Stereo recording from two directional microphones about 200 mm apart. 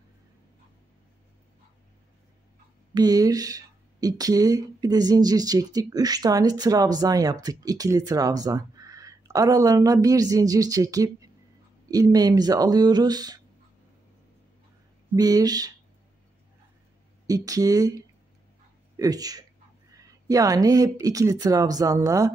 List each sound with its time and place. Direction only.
2.9 s speech: 20° right (ahead or behind)
15.1 s speech: 20° right (ahead or behind)
17.3 s speech: 15° right (ahead or behind)